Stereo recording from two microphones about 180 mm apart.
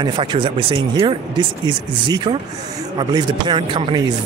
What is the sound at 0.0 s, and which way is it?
A man's voice, 25° right (ahead or behind).